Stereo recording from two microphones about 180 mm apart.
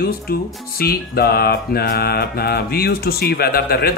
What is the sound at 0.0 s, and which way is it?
Speech, 60° left (ahead or behind).